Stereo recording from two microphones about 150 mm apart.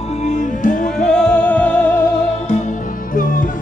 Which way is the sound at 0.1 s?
50° left (ahead or behind).